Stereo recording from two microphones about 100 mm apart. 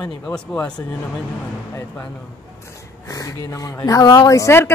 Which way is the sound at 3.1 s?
35° left (ahead or behind).